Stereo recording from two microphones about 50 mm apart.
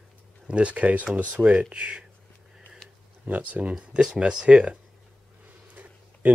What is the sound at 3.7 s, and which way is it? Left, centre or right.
Speech, centre.